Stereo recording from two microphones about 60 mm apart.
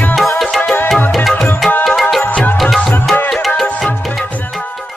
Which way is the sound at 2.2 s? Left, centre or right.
Left.